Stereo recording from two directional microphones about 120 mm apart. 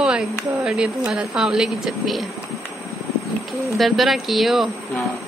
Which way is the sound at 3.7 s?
Centre (ahead or behind).